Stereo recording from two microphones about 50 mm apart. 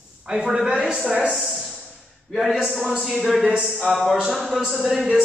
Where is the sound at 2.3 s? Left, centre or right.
Centre.